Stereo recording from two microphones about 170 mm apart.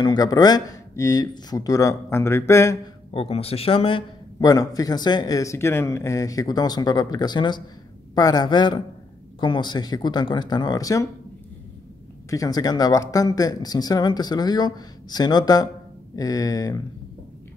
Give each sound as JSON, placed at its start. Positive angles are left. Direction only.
{"t": 0.0, "sound": "speech", "side_deg": 25}
{"t": 3.1, "sound": "speech", "side_deg": 35}
{"t": 12.3, "sound": "speech", "side_deg": 20}